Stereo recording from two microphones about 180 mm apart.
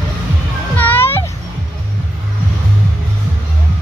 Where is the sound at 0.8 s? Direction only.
10° left (ahead or behind).